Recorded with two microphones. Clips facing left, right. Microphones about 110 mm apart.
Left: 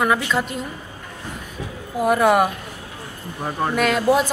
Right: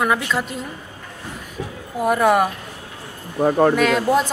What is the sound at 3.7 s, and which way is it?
Speech, centre (ahead or behind).